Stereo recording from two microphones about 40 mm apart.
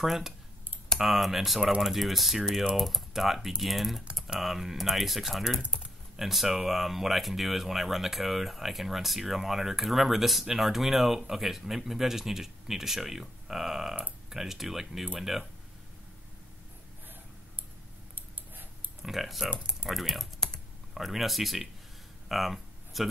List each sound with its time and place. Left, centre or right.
0.0 s speech: centre
5.6 s speech: right
6.1 s speech: centre
19.0 s speech: centre
22.3 s a sound: centre